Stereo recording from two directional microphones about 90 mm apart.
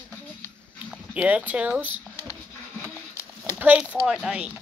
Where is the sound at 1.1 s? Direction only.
15° right (ahead or behind).